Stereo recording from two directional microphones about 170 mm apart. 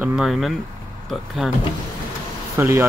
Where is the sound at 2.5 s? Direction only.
15° right (ahead or behind).